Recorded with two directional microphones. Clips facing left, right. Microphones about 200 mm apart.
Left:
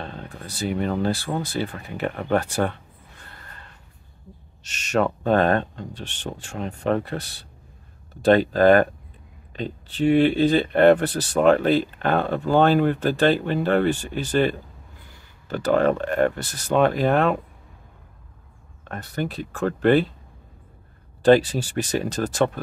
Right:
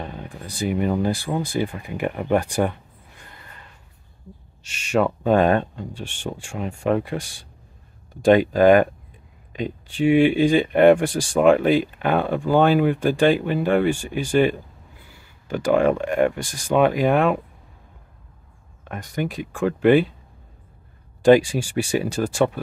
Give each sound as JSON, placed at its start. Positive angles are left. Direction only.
{"t": 0.0, "sound": "speech", "side_deg": -15}
{"t": 4.6, "sound": "speech", "side_deg": -10}
{"t": 18.9, "sound": "speech", "side_deg": -10}
{"t": 21.2, "sound": "speech", "side_deg": -10}